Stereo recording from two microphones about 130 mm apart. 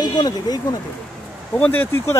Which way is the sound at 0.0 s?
30° left (ahead or behind).